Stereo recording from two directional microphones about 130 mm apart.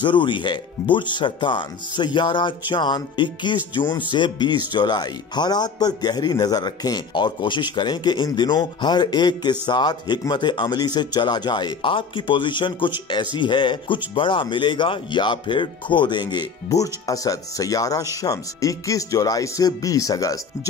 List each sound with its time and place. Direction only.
0.0 s speech: 40° left (ahead or behind)